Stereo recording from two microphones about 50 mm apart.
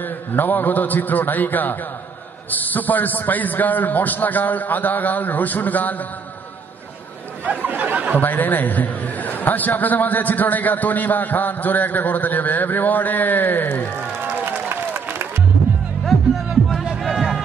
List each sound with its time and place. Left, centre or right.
0.0 s a man's voice: left
7.4 s speech: right
8.2 s a man's voice: left
14.7 s applause: right
16.1 s music: centre
17.1 s a sound: centre